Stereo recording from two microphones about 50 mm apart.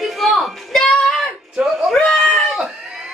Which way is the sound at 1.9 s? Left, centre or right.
Centre.